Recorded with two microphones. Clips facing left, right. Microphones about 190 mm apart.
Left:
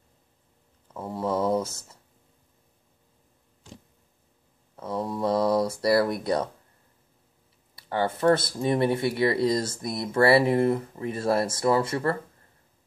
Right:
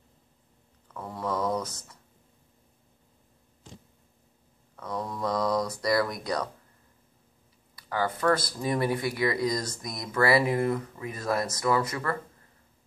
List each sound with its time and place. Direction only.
0.8 s speech: 25° left (ahead or behind)
4.7 s speech: 25° left (ahead or behind)
7.7 s speech: 25° left (ahead or behind)